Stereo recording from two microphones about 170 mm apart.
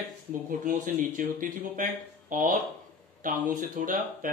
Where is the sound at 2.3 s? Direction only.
50° right (ahead or behind).